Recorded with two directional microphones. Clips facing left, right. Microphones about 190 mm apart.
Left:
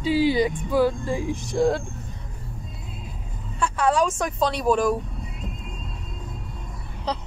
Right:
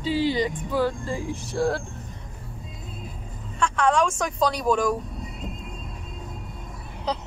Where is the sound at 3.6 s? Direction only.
5° left (ahead or behind).